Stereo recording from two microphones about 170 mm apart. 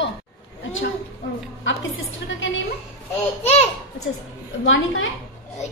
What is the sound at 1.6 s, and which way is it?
A woman's voice, 90° left.